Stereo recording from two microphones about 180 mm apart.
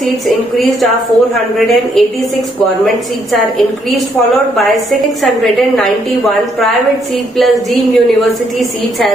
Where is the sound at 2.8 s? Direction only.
Centre (ahead or behind).